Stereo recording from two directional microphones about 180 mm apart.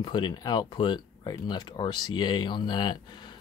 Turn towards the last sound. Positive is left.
turn(degrees=25)  # may be behind; listen again after turning